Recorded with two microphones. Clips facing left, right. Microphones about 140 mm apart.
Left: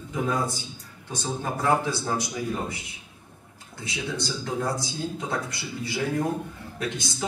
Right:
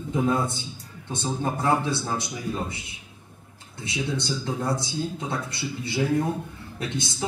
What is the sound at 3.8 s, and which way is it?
Speech, 25° right (ahead or behind).